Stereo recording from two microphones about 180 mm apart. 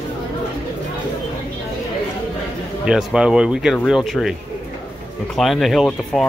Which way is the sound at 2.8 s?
5° right (ahead or behind).